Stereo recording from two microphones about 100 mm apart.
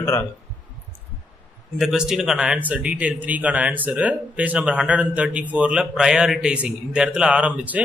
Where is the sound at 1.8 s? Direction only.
5° right (ahead or behind).